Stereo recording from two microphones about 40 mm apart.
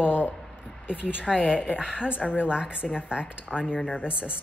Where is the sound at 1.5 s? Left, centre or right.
Centre.